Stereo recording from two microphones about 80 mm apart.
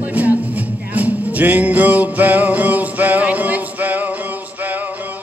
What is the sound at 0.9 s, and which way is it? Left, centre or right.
Music, right.